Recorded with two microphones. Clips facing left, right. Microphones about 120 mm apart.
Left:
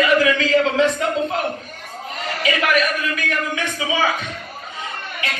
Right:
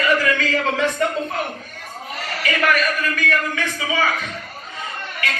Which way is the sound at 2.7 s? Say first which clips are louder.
Left 2 dB; 20° left (ahead or behind).